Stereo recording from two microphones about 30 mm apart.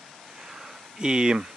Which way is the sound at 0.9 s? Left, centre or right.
Right.